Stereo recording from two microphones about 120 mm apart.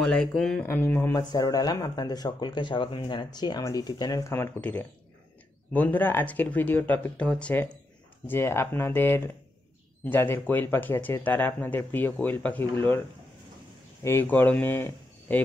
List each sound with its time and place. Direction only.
0.0 s speech: 5° left (ahead or behind)
0.7 s speech: 20° left (ahead or behind)
1.1 s speech: 30° left (ahead or behind)
4.6 s speech: 10° left (ahead or behind)
8.3 s speech: 20° left (ahead or behind)
14.0 s speech: 20° left (ahead or behind)